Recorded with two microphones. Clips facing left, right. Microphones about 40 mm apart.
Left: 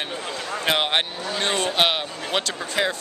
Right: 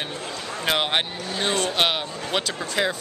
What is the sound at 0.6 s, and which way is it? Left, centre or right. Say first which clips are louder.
Speech: left 1 dB; centre.